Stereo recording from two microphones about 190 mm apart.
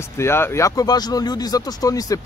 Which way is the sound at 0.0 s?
15° left (ahead or behind).